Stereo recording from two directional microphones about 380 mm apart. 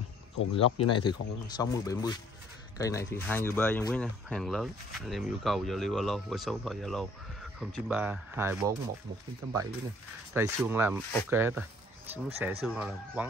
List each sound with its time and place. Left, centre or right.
0.4 s speech: left
1.5 s speech: centre
10.3 s speech: centre
12.1 s speech: centre
12.4 s speech: centre